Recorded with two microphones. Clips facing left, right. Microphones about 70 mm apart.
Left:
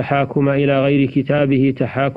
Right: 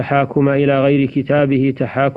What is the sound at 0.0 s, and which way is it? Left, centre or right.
A man's voice, centre.